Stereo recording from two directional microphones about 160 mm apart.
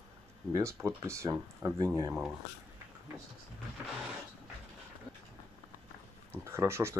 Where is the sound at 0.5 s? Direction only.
20° right (ahead or behind).